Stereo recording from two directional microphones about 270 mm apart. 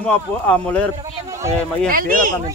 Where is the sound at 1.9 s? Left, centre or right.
Right.